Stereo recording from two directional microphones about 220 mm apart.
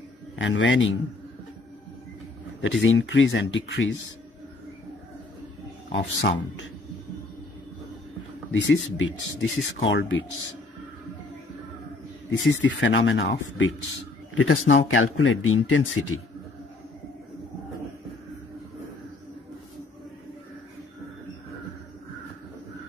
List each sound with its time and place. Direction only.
0.4 s speech: 55° left (ahead or behind)
2.6 s speech: 55° left (ahead or behind)
5.9 s speech: 55° left (ahead or behind)
8.5 s speech: 55° left (ahead or behind)
12.3 s speech: 55° left (ahead or behind)
14.3 s speech: 75° left (ahead or behind)